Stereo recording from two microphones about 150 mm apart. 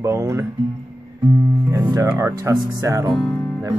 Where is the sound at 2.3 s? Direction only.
25° right (ahead or behind).